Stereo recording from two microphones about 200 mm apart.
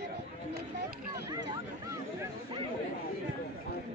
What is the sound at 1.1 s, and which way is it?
Speech, 20° right (ahead or behind).